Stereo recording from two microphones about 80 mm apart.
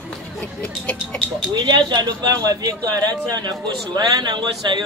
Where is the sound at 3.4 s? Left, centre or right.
Right.